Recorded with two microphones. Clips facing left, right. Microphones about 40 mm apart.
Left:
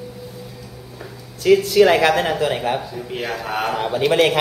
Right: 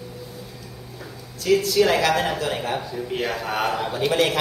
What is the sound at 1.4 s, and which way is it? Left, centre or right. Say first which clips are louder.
Speech: left 5 dB; left.